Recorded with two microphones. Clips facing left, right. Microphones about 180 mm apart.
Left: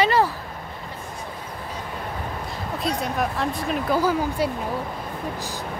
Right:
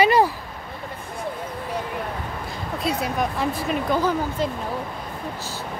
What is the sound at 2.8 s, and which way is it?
Speech, 5° right (ahead or behind).